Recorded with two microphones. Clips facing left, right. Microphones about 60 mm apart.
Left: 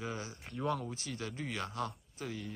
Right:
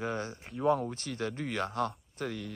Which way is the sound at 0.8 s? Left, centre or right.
Right.